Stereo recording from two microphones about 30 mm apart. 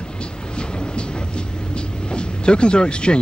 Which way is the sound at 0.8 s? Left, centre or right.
Left.